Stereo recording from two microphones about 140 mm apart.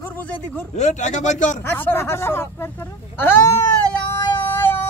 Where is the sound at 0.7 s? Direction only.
60° left (ahead or behind).